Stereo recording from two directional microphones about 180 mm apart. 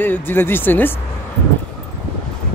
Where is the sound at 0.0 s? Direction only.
10° left (ahead or behind).